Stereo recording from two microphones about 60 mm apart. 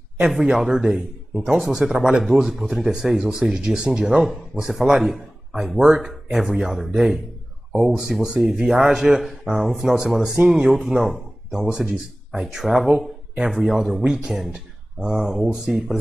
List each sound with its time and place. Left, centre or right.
0.4 s a man's voice: centre
11.6 s a man's voice: centre
11.9 s speech: centre